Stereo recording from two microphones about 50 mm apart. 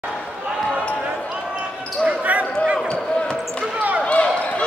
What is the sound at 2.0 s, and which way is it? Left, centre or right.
Basketball bounce, right.